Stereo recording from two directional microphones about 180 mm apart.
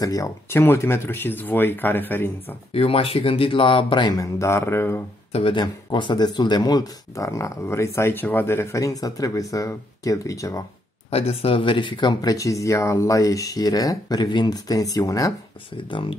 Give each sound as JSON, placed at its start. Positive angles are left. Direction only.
{"t": 0.0, "sound": "speech", "side_deg": 20}
{"t": 2.7, "sound": "speech", "side_deg": 30}
{"t": 5.3, "sound": "speech", "side_deg": 30}
{"t": 11.1, "sound": "speech", "side_deg": 35}